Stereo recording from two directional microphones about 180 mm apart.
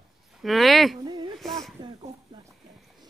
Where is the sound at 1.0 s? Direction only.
25° right (ahead or behind).